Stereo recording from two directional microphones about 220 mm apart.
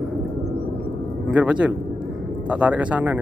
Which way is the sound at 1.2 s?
5° right (ahead or behind).